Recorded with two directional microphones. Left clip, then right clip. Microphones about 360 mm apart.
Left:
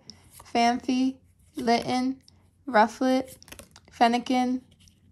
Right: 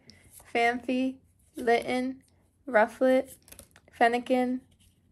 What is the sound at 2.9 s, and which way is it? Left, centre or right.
Speech, centre.